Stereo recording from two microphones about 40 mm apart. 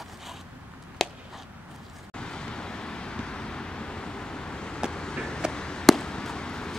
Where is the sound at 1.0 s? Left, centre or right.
Centre.